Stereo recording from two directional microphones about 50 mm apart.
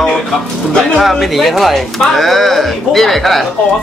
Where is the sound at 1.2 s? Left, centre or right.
Centre.